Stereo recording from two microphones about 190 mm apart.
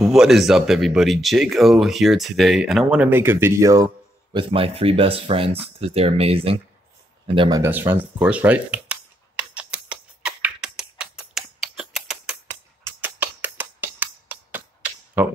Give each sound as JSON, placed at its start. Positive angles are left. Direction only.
{"t": 0.0, "sound": "speech", "side_deg": 0}
{"t": 7.3, "sound": "speech", "side_deg": -20}
{"t": 9.4, "sound": "a sound", "side_deg": -5}
{"t": 12.4, "sound": "music", "side_deg": -10}